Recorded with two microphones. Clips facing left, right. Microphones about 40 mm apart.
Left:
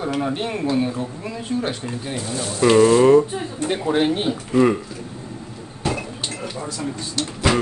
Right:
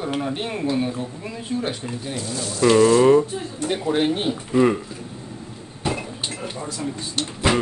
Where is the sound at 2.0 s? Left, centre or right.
Left.